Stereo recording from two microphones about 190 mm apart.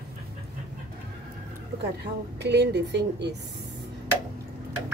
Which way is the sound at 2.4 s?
65° right (ahead or behind).